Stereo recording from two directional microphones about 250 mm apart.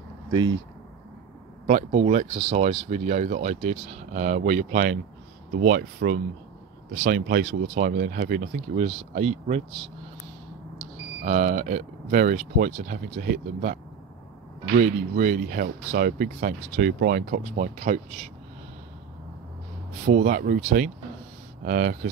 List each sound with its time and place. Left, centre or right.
0.3 s speech: centre
1.7 s speech: right
11.2 s speech: right
14.8 s speech: right
20.1 s speech: right